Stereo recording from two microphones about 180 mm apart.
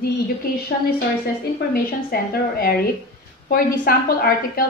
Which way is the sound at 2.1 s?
60° left (ahead or behind).